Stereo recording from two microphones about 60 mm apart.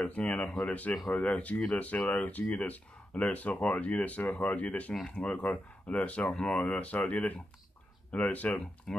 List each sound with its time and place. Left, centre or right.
0.0 s speech: left
8.9 s speech: centre